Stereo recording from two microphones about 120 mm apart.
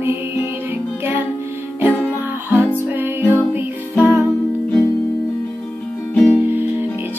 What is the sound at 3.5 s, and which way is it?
Music, 15° right (ahead or behind).